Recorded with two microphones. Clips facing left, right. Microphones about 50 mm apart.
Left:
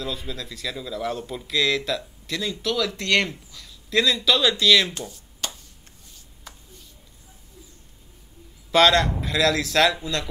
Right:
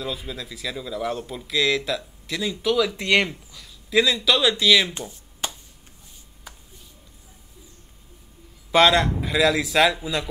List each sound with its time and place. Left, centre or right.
0.0 s speech: centre
5.4 s a sound: centre
8.7 s speech: centre